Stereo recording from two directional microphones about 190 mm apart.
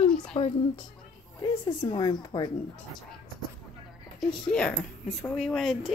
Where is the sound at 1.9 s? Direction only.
25° left (ahead or behind).